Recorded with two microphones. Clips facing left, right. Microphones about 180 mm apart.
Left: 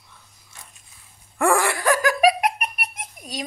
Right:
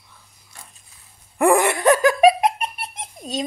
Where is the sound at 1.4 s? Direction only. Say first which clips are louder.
Right 4 dB; 20° right (ahead or behind).